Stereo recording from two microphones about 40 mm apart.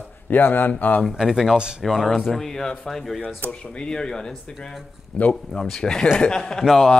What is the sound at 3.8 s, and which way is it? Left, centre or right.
Speech, centre.